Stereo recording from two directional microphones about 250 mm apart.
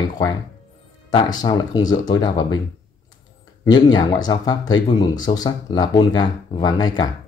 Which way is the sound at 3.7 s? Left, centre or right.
Centre.